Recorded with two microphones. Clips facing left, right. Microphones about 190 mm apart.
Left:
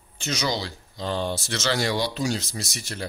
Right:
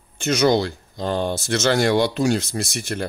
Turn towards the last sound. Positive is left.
turn(degrees=-55)  # may be behind; listen again after turning